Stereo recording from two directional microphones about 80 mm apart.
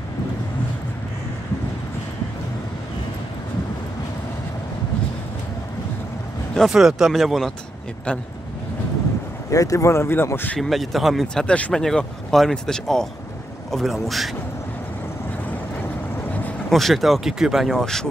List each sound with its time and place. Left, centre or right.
6.7 s speech: centre
9.5 s speech: left
10.6 s speech: centre
11.4 s speech: centre
16.7 s speech: centre